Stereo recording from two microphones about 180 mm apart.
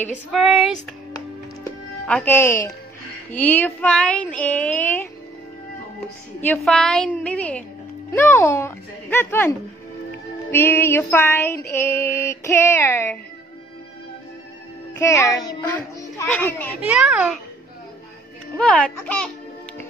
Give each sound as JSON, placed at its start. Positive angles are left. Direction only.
{"t": 0.1, "sound": "speech", "side_deg": -5}
{"t": 2.0, "sound": "female singing", "side_deg": 10}
{"t": 6.4, "sound": "female singing", "side_deg": 5}
{"t": 15.0, "sound": "female singing", "side_deg": 15}
{"t": 16.9, "sound": "speech", "side_deg": 0}
{"t": 18.6, "sound": "female singing", "side_deg": 5}